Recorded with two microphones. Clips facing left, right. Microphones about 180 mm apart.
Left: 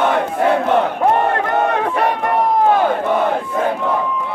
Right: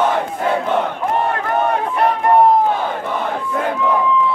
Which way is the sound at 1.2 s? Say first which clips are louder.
Left 2 dB; 70° left (ahead or behind).